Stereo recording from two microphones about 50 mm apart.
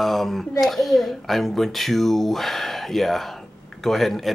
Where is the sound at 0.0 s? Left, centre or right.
Centre.